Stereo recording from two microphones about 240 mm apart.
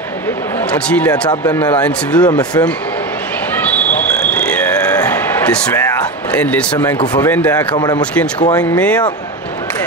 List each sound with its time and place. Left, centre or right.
0.8 s speech: centre
4.5 s a sound: centre
6.3 s speech: centre
7.7 s speech: centre
8.0 s speech: centre